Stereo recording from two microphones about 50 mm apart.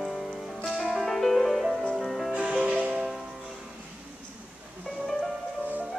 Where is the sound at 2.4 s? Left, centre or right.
Right.